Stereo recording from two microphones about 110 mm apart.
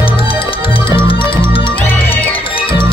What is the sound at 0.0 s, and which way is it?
Music, 55° left (ahead or behind).